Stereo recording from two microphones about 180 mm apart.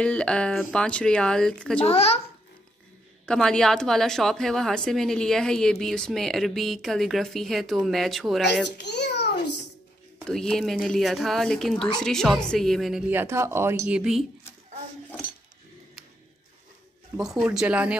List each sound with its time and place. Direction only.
0.0 s speech: 5° left (ahead or behind)
1.9 s a child's voice: 35° left (ahead or behind)
3.3 s speech: 5° left (ahead or behind)
8.6 s a child's voice: 70° left (ahead or behind)
10.2 s speech: 5° left (ahead or behind)
17.2 s speech: 5° right (ahead or behind)